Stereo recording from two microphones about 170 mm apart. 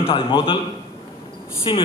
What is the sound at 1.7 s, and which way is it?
Speech, 30° left (ahead or behind).